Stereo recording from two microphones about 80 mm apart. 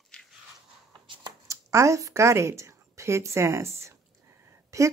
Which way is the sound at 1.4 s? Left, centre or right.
Right.